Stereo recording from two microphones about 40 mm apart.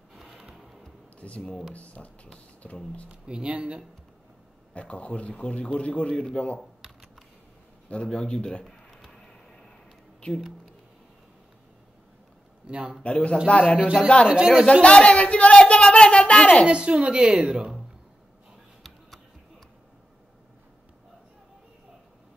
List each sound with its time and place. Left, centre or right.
0.1 s music: centre
1.2 s a man's voice: left
3.1 s a woman's voice: right
4.7 s a man's voice: left
7.9 s a man's voice: left
9.1 s vehicle: centre
12.6 s a man's voice: right
13.0 s a man's voice: left
14.3 s a woman's voice: right
14.7 s a man's voice: left
15.5 s a sound: centre
16.6 s a woman's voice: right
18.8 s music: centre